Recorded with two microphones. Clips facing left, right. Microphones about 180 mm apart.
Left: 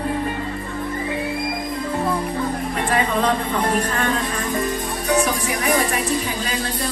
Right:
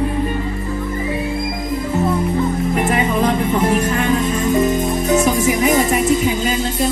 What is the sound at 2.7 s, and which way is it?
Music, 25° right (ahead or behind).